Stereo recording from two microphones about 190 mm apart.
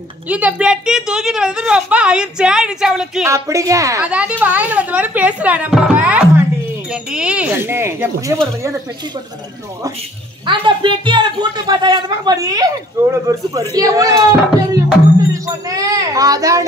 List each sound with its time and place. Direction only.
0.3 s a woman's voice: 5° right (ahead or behind)
3.3 s speech: 15° right (ahead or behind)
4.0 s speech: 5° right (ahead or behind)
10.4 s a woman's voice: 25° right (ahead or behind)
15.4 s speech: 20° right (ahead or behind)